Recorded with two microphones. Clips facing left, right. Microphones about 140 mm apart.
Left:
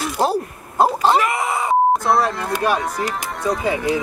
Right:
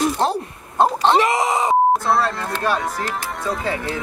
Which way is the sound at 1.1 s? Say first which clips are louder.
Right 2 dB; 25° right (ahead or behind).